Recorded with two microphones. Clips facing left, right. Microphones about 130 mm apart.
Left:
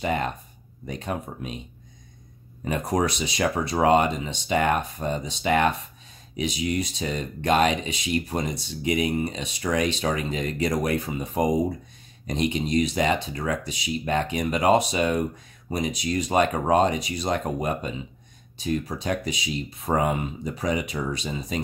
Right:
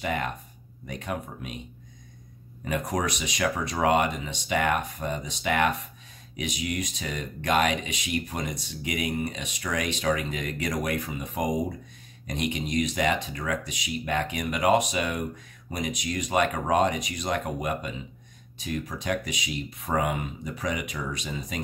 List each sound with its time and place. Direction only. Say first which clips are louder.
0.0 s speech: left 3 dB; 30° left (ahead or behind)
2.6 s speech: left 4 dB; 30° left (ahead or behind)